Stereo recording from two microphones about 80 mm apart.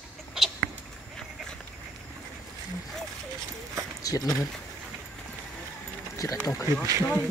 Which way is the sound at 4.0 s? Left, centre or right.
Left.